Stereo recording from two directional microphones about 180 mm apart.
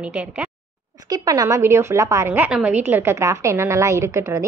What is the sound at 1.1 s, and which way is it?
A woman's voice, 20° right (ahead or behind).